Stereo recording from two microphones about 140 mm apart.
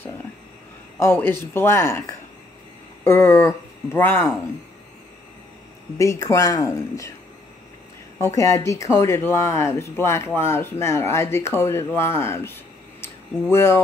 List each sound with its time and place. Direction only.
0.9 s speech: 15° left (ahead or behind)
5.9 s speech: 25° left (ahead or behind)
8.2 s speech: 20° left (ahead or behind)
13.0 s a sound: 20° left (ahead or behind)